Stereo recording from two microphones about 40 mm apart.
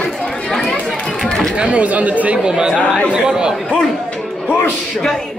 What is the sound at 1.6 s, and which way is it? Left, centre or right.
Speech, right.